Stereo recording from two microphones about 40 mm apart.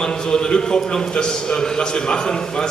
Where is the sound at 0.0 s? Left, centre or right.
Centre.